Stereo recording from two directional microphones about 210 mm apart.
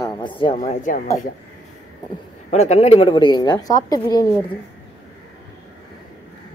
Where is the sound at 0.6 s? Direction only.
40° left (ahead or behind).